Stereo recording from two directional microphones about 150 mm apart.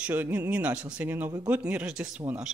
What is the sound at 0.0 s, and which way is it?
Speech, 10° right (ahead or behind).